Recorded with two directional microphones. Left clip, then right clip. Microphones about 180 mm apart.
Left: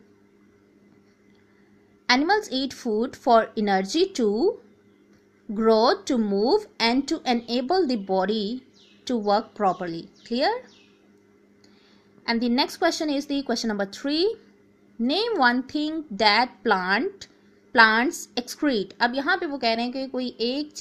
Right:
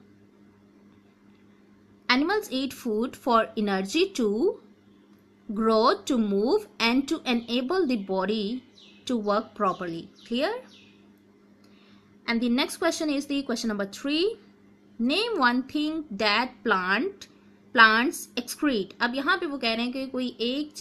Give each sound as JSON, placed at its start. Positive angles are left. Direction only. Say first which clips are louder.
{"t": 2.0, "sound": "a woman's voice", "louder": "left 3 dB", "side_deg": 20}
{"t": 12.3, "sound": "a woman's voice", "louder": "left 3 dB", "side_deg": 25}